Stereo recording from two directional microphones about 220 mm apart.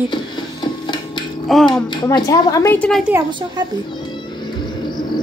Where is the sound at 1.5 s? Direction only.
Centre (ahead or behind).